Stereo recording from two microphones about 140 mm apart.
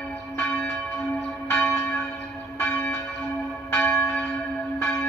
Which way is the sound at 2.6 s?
10° left (ahead or behind).